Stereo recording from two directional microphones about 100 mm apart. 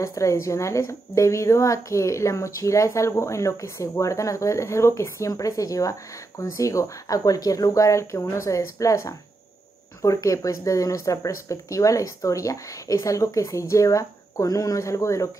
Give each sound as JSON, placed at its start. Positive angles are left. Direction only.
{"t": 0.0, "sound": "a woman's voice", "side_deg": 30}